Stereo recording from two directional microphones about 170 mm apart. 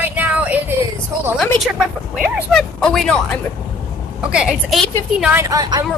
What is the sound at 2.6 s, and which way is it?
Speech, 5° left (ahead or behind).